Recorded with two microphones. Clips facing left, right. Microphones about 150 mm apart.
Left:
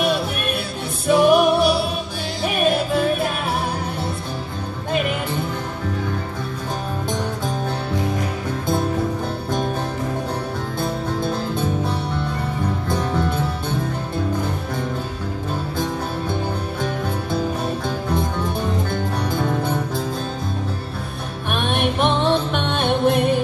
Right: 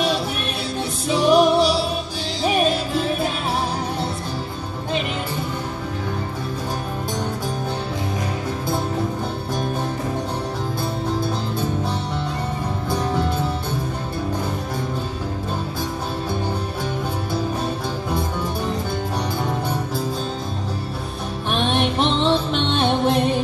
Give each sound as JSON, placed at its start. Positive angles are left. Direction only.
{"t": 1.0, "sound": "music", "side_deg": 55}
{"t": 21.5, "sound": "music", "side_deg": 55}